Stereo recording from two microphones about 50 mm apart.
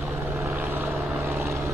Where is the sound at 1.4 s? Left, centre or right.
Right.